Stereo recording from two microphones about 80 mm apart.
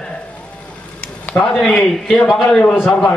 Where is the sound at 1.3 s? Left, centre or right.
Centre.